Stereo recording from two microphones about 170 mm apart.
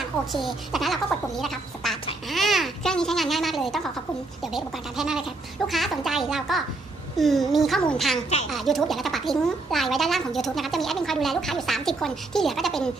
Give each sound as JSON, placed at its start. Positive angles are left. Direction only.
{"t": 0.0, "sound": "a child's voice", "side_deg": 0}